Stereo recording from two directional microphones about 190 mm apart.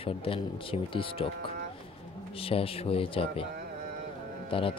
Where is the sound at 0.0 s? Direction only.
30° left (ahead or behind).